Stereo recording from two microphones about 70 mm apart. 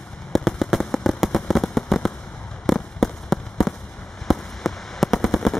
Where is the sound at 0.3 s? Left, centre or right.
Centre.